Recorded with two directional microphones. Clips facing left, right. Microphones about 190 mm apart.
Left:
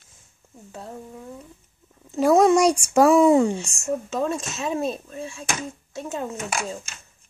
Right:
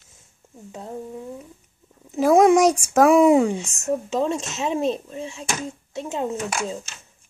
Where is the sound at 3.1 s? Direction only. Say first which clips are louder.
Right 2 dB; 15° right (ahead or behind).